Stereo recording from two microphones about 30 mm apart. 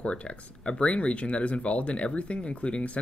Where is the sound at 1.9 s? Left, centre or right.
Left.